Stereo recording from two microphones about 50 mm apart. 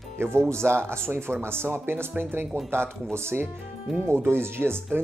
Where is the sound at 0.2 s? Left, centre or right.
Right.